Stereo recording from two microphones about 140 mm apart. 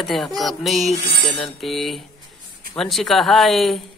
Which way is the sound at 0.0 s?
Centre (ahead or behind).